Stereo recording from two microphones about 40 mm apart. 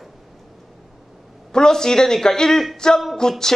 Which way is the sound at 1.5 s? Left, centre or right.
Centre.